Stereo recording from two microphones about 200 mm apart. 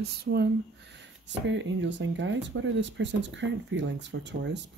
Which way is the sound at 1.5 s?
65° right (ahead or behind).